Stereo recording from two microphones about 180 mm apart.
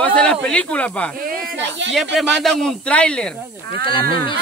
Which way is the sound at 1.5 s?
90° right.